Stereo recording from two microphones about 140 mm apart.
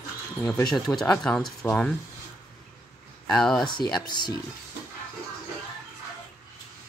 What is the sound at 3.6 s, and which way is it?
Speech, 30° left (ahead or behind).